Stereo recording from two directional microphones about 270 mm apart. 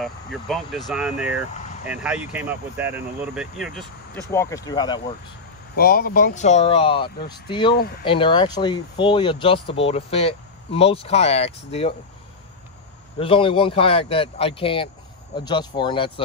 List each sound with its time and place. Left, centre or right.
0.0 s speech: centre
4.1 s speech: centre
5.8 s speech: left; by 7.7 s centre
7.7 s speech: left
8.0 s speech: centre
13.2 s speech: centre